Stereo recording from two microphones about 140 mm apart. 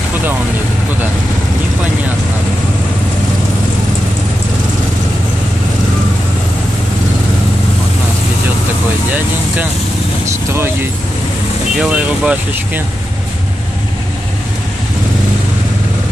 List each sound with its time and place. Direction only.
10.5 s speech: 15° right (ahead or behind)